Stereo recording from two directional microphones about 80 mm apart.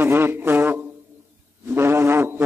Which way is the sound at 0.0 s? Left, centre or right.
Right.